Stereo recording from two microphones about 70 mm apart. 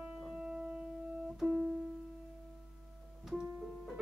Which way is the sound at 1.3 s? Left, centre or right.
Centre.